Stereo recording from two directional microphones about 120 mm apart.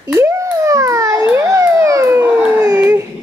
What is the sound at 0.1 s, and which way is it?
Children playing, 25° right (ahead or behind).